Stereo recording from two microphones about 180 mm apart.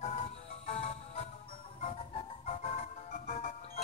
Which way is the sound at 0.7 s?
40° left (ahead or behind).